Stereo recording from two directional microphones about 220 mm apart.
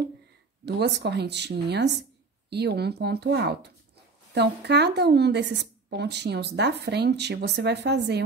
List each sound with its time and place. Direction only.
0.7 s a woman's voice: 50° right (ahead or behind)